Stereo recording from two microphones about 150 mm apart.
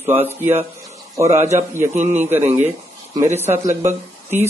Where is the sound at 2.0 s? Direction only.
45° right (ahead or behind).